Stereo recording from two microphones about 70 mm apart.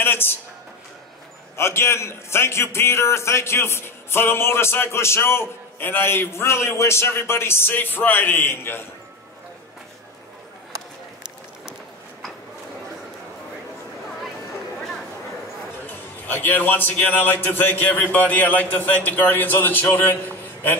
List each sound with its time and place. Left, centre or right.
0.0 s a sound: left
1.6 s a man's voice: left
15.9 s a man's voice: left